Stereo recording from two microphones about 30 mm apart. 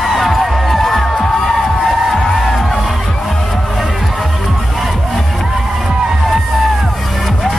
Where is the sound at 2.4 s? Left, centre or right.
Centre.